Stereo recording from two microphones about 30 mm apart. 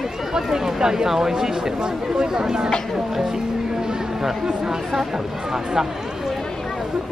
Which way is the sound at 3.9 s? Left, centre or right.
Centre.